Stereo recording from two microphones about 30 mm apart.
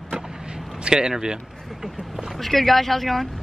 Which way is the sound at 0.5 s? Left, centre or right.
Right.